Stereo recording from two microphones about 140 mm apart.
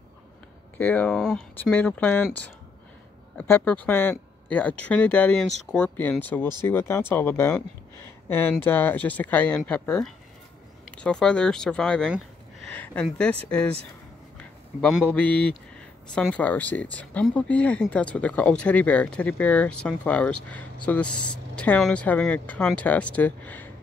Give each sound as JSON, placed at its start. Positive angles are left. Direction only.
{"t": 0.7, "sound": "speech", "side_deg": 10}
{"t": 14.8, "sound": "speech", "side_deg": 5}